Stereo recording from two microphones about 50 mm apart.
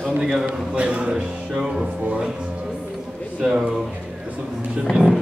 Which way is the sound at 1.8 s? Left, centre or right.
Right.